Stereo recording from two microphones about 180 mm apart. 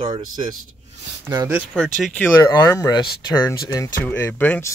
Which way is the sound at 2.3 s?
20° left (ahead or behind).